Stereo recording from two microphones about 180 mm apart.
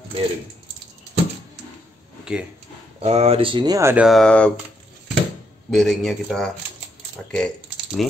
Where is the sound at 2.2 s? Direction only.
5° right (ahead or behind).